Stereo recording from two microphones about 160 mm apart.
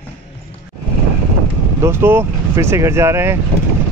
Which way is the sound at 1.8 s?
15° right (ahead or behind).